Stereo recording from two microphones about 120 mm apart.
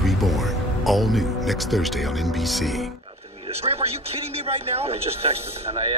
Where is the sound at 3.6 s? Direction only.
45° right (ahead or behind).